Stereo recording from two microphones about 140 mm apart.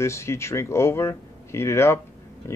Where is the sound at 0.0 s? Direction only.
20° left (ahead or behind).